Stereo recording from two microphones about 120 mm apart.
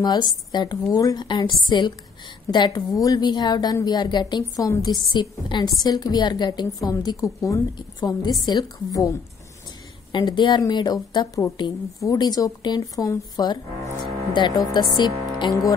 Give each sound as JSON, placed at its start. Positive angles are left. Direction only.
{"t": 0.0, "sound": "a woman's voice", "side_deg": 35}
{"t": 10.1, "sound": "a woman's voice", "side_deg": 40}